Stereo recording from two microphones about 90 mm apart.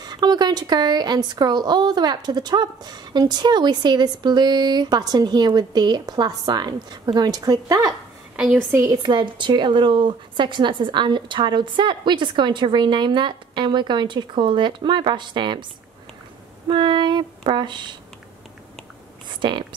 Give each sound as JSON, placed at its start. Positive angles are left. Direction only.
{"t": 0.0, "sound": "speech", "side_deg": -50}
{"t": 8.5, "sound": "a woman's voice", "side_deg": -25}
{"t": 8.9, "sound": "speech", "side_deg": -55}
{"t": 16.6, "sound": "speech", "side_deg": -60}
{"t": 19.4, "sound": "speech", "side_deg": -60}